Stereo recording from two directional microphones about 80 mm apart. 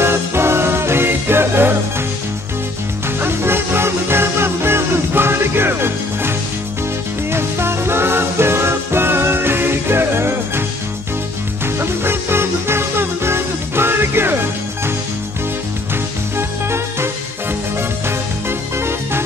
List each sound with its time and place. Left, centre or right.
0.0 s music: right
3.2 s music: right
11.6 s music: right
16.3 s music: right